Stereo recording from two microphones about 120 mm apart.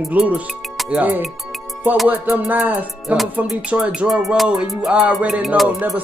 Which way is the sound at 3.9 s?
Centre (ahead or behind).